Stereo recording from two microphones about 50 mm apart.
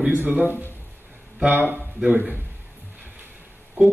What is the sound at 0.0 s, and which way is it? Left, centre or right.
Speech, right.